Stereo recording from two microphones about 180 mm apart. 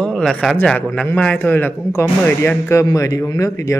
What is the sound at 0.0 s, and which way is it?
A man's voice, 5° left (ahead or behind).